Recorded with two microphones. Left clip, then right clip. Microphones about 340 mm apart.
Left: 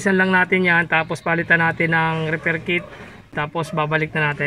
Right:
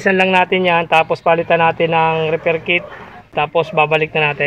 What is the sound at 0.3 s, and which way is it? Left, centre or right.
Speech, right.